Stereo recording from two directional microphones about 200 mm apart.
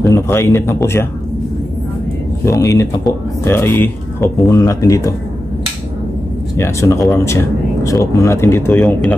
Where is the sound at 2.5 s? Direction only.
15° left (ahead or behind).